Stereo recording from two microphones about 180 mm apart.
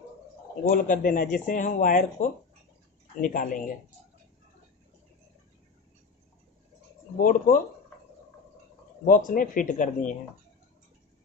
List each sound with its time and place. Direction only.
0.7 s speech: 50° left (ahead or behind)
7.2 s speech: 50° left (ahead or behind)
9.0 s speech: 50° left (ahead or behind)